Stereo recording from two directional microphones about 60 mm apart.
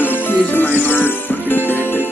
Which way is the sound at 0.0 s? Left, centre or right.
Left.